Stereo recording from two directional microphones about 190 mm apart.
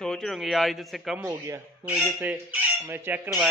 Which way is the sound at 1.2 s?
15° right (ahead or behind).